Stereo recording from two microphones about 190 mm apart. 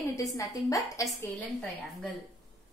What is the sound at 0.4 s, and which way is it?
A woman's voice, 15° left (ahead or behind).